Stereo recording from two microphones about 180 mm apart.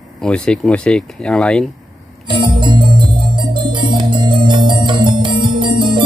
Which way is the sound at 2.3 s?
25° right (ahead or behind).